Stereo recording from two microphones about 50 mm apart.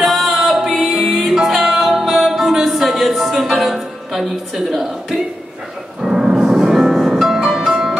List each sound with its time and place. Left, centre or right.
0.0 s music: centre
0.5 s a capella: centre
1.0 s music: centre